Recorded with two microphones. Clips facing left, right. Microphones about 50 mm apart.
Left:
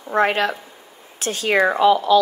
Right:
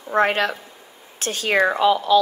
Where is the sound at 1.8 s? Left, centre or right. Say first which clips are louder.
Left 2 dB; left.